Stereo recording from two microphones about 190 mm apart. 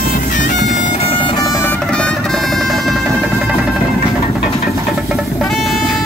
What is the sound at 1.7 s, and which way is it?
Music, 5° left (ahead or behind).